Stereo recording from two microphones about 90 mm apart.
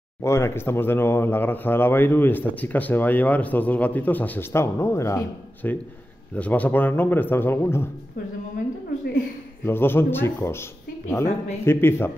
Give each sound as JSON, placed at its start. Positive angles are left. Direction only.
{"t": 0.2, "sound": "speech", "side_deg": 30}
{"t": 5.6, "sound": "speech", "side_deg": 20}
{"t": 9.7, "sound": "speech", "side_deg": 25}